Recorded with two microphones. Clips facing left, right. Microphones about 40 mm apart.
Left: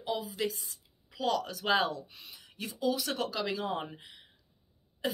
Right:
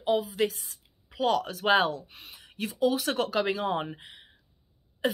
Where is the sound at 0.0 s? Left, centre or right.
Right.